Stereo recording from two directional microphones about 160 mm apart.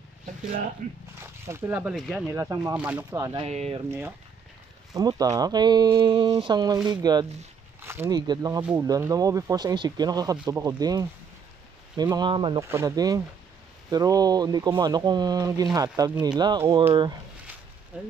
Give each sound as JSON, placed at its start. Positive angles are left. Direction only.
{"t": 0.8, "sound": "speech", "side_deg": -50}
{"t": 1.2, "sound": "speech", "side_deg": -15}
{"t": 2.3, "sound": "speech", "side_deg": -20}
{"t": 3.3, "sound": "speech", "side_deg": -40}
{"t": 4.9, "sound": "speech", "side_deg": -25}
{"t": 7.8, "sound": "a sound", "side_deg": -15}
{"t": 8.2, "sound": "speech", "side_deg": -25}
{"t": 8.5, "sound": "speech", "side_deg": -10}
{"t": 8.8, "sound": "speech", "side_deg": -20}
{"t": 12.6, "sound": "speech", "side_deg": -15}
{"t": 17.9, "sound": "speech", "side_deg": -10}